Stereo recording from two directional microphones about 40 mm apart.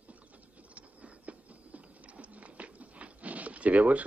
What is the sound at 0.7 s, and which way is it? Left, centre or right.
Biting, right.